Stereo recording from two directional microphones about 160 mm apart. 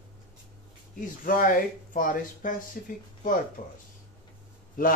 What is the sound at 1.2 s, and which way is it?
Speech, 60° left (ahead or behind).